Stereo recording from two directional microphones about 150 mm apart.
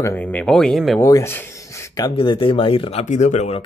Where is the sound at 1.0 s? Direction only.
20° left (ahead or behind).